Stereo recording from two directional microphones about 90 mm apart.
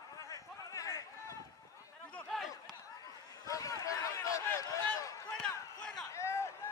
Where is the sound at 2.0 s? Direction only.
10° left (ahead or behind).